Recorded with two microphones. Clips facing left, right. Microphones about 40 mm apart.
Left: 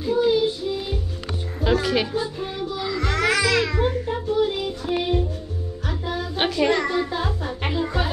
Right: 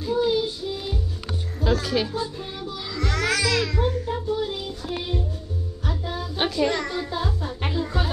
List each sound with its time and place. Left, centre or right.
0.0 s child singing: centre
1.6 s music: left
2.1 s music: centre
6.3 s child singing: left
6.7 s music: left